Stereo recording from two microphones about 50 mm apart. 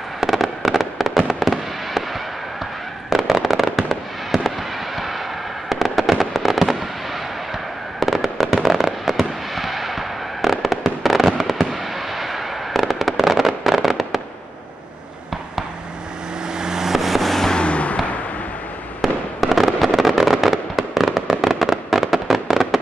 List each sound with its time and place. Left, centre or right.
0.2 s fireworks: centre
3.1 s fireworks: centre
5.7 s fireworks: centre
8.0 s fireworks: centre
16.5 s vehicle: centre
17.6 s a sound: left
18.9 s fireworks: centre